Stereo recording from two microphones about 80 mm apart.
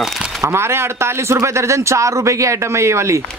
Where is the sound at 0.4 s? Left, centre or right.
Right.